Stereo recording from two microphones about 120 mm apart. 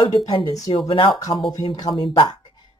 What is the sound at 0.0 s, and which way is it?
Speech, 40° left (ahead or behind).